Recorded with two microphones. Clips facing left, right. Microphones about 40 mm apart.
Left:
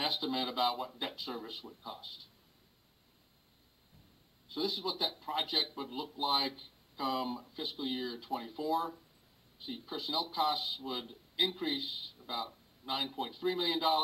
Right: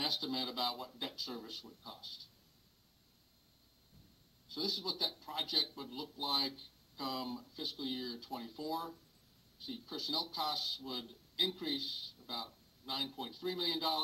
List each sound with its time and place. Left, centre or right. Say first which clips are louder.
0.0 s speech: left 4 dB; left
4.5 s speech: left 4 dB; left